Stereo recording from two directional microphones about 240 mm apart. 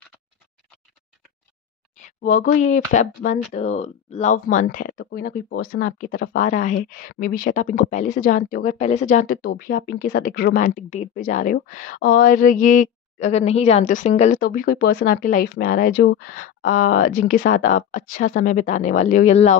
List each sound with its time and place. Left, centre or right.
2.0 s speech: left